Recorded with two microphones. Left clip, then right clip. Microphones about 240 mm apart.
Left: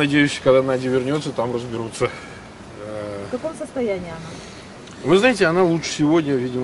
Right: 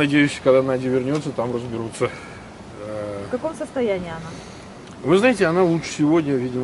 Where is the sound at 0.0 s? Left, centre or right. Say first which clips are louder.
Left 1 dB; centre.